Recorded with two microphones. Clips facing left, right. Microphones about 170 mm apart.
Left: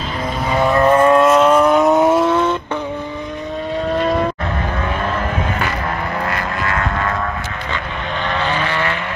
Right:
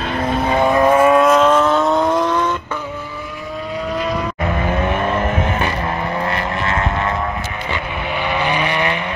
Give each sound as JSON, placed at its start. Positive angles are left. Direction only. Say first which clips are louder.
{"t": 0.5, "sound": "vehicle", "louder": "left 1 dB", "side_deg": -20}
{"t": 6.3, "sound": "vehicle", "louder": "right 1 dB", "side_deg": -25}
{"t": 8.3, "sound": "vehicle", "louder": "right 1 dB", "side_deg": -15}